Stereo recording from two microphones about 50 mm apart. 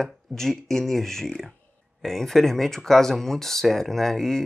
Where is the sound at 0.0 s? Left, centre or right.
Centre.